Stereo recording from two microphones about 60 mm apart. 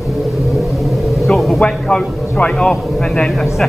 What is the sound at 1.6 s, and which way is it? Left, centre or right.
A man's voice, centre.